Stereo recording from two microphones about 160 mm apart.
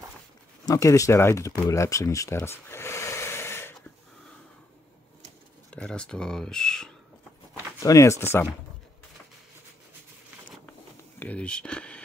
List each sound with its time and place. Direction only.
0.7 s speech: 20° left (ahead or behind)
5.7 s speech: 5° left (ahead or behind)
7.8 s speech: 20° left (ahead or behind)
11.1 s speech: 10° left (ahead or behind)